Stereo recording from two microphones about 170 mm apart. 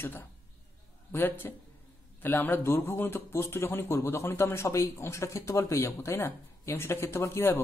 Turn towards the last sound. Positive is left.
turn(degrees=15)  # may be behind; listen again after turning